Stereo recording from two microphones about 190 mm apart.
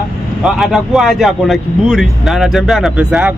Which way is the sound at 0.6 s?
Centre (ahead or behind).